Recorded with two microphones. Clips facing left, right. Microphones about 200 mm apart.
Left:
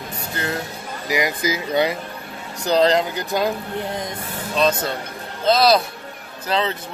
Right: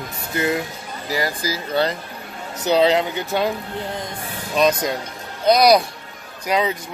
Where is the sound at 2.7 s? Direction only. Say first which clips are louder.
Even; 5° right (ahead or behind).